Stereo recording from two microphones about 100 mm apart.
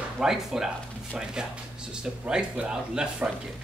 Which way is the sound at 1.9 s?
10° right (ahead or behind).